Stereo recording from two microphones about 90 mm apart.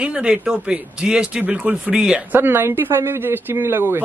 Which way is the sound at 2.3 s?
25° right (ahead or behind).